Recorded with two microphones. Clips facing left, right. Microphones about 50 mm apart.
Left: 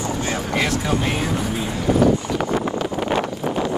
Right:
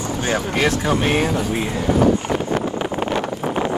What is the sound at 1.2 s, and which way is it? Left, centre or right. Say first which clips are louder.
Speech: right 3 dB; right.